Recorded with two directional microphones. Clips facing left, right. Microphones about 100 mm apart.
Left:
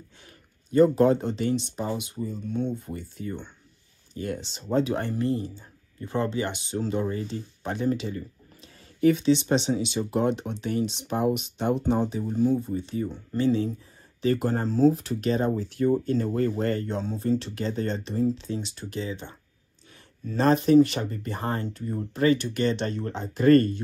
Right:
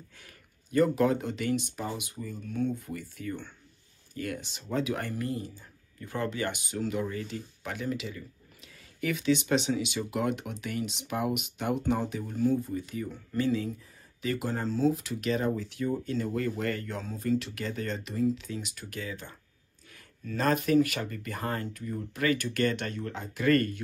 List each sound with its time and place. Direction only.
0.2 s speech: 25° left (ahead or behind)
14.2 s speech: 40° left (ahead or behind)